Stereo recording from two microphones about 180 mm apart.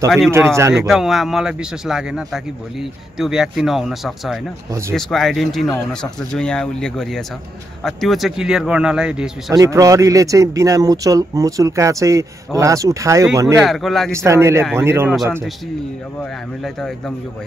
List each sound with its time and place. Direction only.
0.3 s speech: 15° right (ahead or behind)
0.8 s a man's voice: centre (ahead or behind)
4.6 s speech: 15° right (ahead or behind)
4.9 s a man's voice: centre (ahead or behind)
9.5 s speech: 20° right (ahead or behind)
13.6 s a man's voice: centre (ahead or behind)
14.1 s speech: 15° right (ahead or behind)
16.2 s a man's voice: 5° left (ahead or behind)